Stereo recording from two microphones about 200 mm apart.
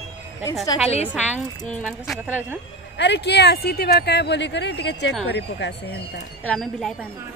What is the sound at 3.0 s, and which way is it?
Speech, 55° left (ahead or behind).